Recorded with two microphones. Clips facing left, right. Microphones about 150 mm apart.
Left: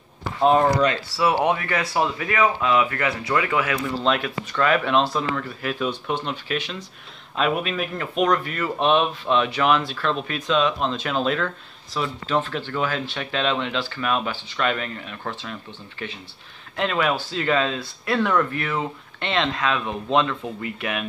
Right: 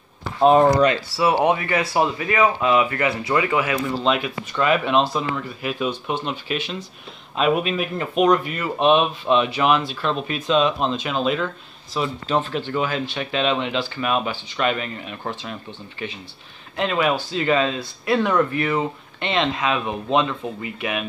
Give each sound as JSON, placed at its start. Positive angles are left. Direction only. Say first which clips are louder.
{"t": 0.4, "sound": "speech", "louder": "right 3 dB", "side_deg": -15}
{"t": 11.9, "sound": "speech", "louder": "right 2 dB", "side_deg": -20}
{"t": 16.7, "sound": "speech", "louder": "right 2 dB", "side_deg": -5}